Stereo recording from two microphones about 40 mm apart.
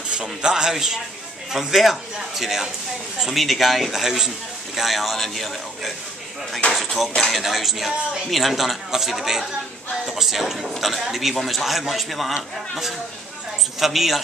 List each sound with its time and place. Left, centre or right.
0.1 s a man's voice: right; by 12.4 s centre
13.7 s a man's voice: centre